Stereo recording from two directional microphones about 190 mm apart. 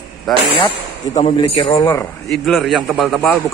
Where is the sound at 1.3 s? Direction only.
25° left (ahead or behind).